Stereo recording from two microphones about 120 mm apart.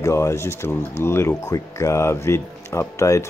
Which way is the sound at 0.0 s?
25° left (ahead or behind).